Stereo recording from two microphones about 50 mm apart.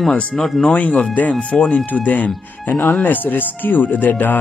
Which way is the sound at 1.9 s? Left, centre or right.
Left.